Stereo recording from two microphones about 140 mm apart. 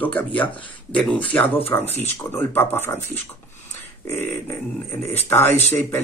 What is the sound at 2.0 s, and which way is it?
Speech, 15° left (ahead or behind).